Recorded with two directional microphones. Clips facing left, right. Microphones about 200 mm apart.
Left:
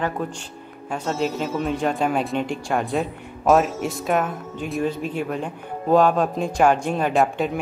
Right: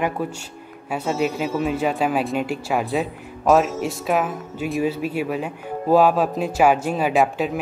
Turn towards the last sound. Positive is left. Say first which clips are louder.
# right 1 dB
turn(degrees=0)  # may be behind; listen again after turning